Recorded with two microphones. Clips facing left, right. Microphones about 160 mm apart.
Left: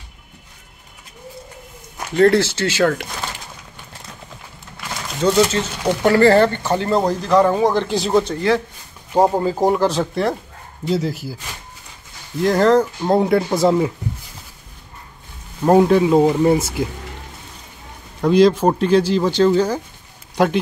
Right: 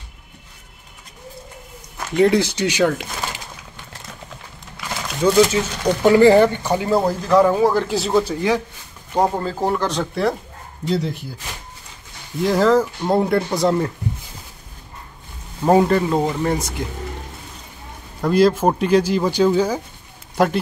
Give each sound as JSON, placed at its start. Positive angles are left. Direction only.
{"t": 2.1, "sound": "speech", "side_deg": -15}
{"t": 4.7, "sound": "crumpling", "side_deg": -10}
{"t": 6.0, "sound": "speech", "side_deg": -15}
{"t": 9.4, "sound": "speech", "side_deg": 10}
{"t": 12.4, "sound": "speech", "side_deg": 0}
{"t": 15.6, "sound": "speech", "side_deg": 0}
{"t": 18.3, "sound": "speech", "side_deg": -5}